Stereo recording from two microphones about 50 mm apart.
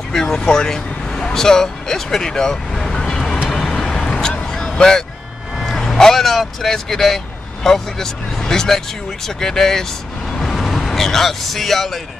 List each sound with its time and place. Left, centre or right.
0.1 s speech: centre
3.4 s vehicle: centre
5.7 s speech: centre
10.4 s vehicle: centre